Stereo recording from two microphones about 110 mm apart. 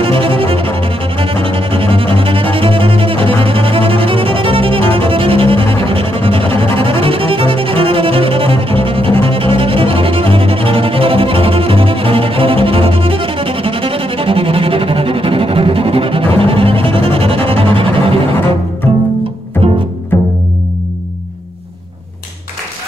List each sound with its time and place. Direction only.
0.0 s music: 55° right (ahead or behind)